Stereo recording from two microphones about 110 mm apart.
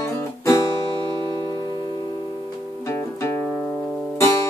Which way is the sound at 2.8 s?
20° left (ahead or behind).